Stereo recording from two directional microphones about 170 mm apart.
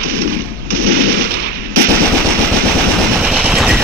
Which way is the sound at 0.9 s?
65° right (ahead or behind).